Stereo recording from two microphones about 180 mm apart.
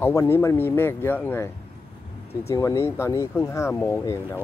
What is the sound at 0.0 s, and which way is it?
Speech, 15° left (ahead or behind).